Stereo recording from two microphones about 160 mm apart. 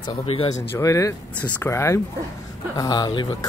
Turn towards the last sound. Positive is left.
turn(degrees=25)  # may be behind; listen again after turning